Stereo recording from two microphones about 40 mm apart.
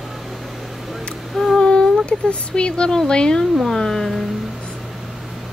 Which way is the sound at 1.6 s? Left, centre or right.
Left.